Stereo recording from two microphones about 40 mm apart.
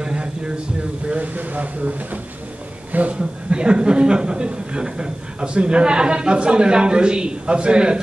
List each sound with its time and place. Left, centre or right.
0.0 s a sound: right
1.2 s speech: right
3.2 s speech: right